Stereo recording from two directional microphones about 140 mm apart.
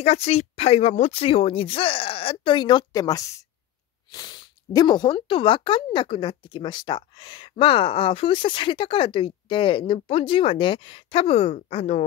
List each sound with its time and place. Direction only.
0.0 s speech: 45° left (ahead or behind)